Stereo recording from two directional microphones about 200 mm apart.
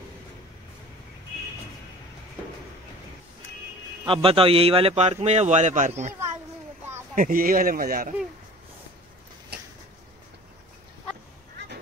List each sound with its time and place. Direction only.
4.0 s a man's voice: 25° right (ahead or behind)
7.2 s speech: 45° right (ahead or behind)